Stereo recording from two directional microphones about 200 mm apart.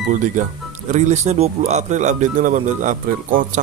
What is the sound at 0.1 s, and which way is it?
Speech, 40° right (ahead or behind).